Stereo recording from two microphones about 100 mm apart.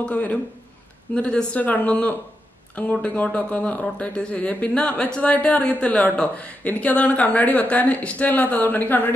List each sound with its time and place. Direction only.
0.0 s speech: 15° left (ahead or behind)